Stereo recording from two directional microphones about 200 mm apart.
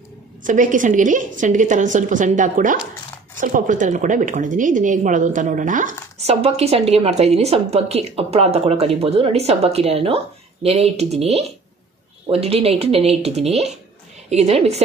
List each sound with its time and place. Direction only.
0.4 s a woman's voice: 40° right (ahead or behind)